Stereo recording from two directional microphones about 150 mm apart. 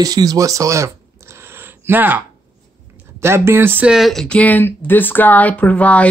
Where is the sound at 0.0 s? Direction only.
25° right (ahead or behind).